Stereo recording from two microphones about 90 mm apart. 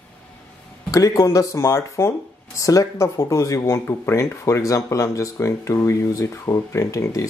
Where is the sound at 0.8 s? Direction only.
40° left (ahead or behind).